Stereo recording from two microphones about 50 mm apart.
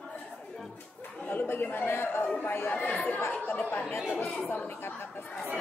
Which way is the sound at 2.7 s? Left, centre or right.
Left.